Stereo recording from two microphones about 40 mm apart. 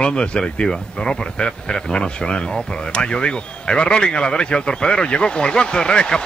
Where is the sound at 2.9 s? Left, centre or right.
Left.